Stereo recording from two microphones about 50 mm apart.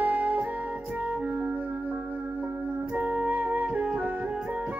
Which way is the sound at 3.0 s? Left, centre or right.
Right.